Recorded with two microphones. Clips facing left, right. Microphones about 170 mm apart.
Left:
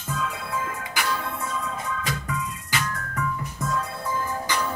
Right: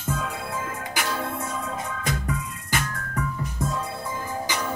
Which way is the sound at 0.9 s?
50° right (ahead or behind).